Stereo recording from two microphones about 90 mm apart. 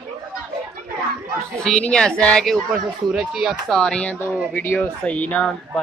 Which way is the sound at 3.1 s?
5° right (ahead or behind).